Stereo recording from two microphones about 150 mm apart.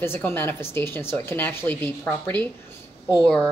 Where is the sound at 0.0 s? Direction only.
15° left (ahead or behind).